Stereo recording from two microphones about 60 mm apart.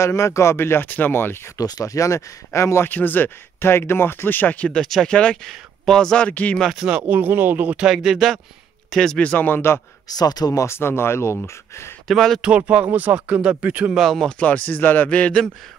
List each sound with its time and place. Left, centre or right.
0.0 s speech: left
1.6 s speech: left
2.9 s speech: left
5.0 s speech: centre
6.8 s speech: centre
7.7 s speech: centre
8.9 s speech: centre
9.2 s speech: left
10.0 s speech: left
10.7 s speech: left
12.1 s speech: centre
12.4 s speech: centre
13.9 s speech: centre
14.4 s speech: left